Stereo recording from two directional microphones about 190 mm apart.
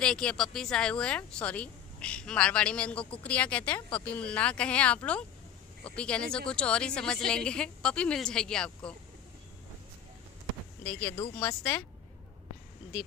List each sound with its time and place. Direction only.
0.0 s a woman's voice: 5° left (ahead or behind)
10.8 s speech: 10° left (ahead or behind)
11.1 s speech: 25° left (ahead or behind)
11.4 s a woman's voice: 5° left (ahead or behind)